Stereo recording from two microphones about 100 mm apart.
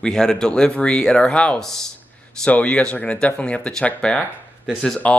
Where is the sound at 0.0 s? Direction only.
5° left (ahead or behind).